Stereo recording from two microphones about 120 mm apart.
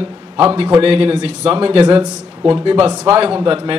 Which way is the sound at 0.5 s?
50° right (ahead or behind).